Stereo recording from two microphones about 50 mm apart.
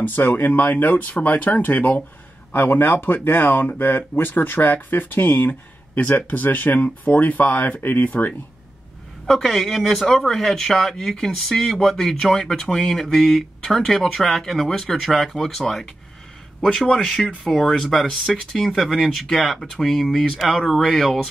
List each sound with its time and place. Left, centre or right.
0.0 s speech: left
9.2 s speech: centre